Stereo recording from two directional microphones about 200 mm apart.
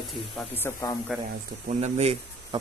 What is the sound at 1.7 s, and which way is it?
Speech, 35° right (ahead or behind).